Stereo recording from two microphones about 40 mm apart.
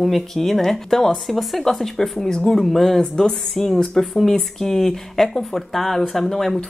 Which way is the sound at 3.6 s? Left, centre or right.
Centre.